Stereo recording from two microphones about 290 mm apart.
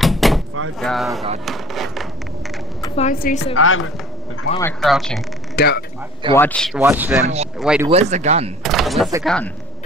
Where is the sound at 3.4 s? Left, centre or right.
Left.